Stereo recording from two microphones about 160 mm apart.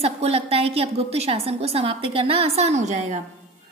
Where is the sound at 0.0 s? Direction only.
40° right (ahead or behind).